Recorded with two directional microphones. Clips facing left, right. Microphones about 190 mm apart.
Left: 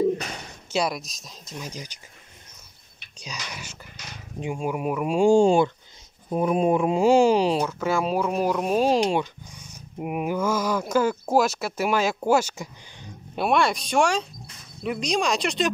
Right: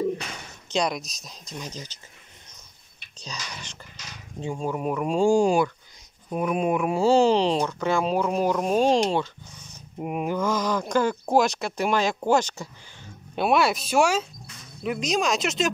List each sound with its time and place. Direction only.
0.7 s speech: 5° left (ahead or behind)
3.2 s speech: 10° left (ahead or behind)
5.3 s speech: 25° left (ahead or behind)
7.0 s speech: 10° left (ahead or behind)
13.4 s speech: 5° right (ahead or behind)